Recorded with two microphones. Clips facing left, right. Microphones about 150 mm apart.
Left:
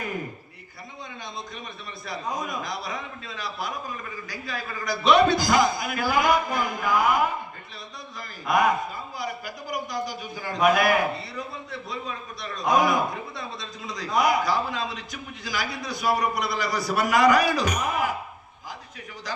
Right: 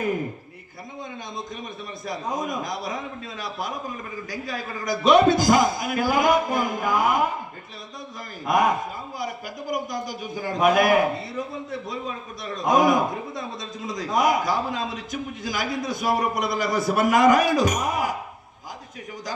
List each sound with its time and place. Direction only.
2.0 s speech: 45° right (ahead or behind)
8.5 s speech: 45° right (ahead or behind)